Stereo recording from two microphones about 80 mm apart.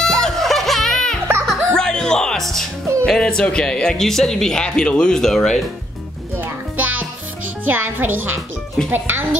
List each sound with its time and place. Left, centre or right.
0.0 s music: centre
3.1 s speech: centre
6.3 s music: right
7.6 s a woman's voice: right